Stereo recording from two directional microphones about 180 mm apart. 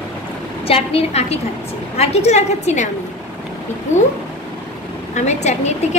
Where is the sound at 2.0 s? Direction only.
35° left (ahead or behind).